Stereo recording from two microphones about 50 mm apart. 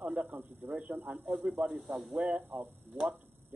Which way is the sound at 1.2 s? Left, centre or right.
Centre.